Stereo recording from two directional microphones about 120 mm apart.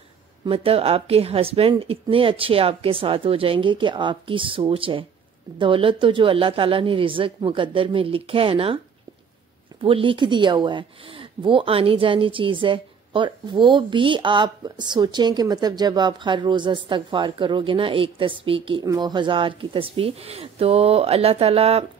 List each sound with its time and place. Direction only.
0.5 s speech: 55° right (ahead or behind)
9.8 s speech: 45° right (ahead or behind)
18.9 s speech: 35° right (ahead or behind); by 21.8 s 55° right (ahead or behind)